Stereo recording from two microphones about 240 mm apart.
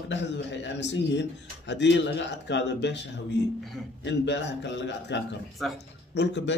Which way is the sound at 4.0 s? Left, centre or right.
Left.